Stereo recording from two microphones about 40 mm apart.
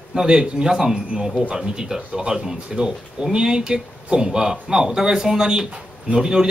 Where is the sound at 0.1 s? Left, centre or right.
Centre.